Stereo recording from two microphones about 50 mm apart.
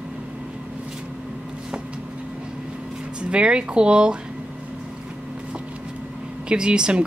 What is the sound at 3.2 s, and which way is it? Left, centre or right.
Speech, right.